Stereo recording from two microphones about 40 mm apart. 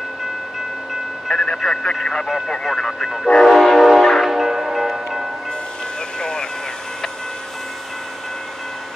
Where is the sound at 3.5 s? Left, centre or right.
Centre.